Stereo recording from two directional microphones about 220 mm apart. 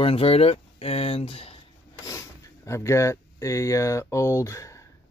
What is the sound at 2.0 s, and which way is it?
Speech, 15° left (ahead or behind).